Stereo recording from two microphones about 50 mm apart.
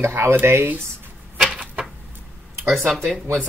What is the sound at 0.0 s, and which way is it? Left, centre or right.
Speech, right.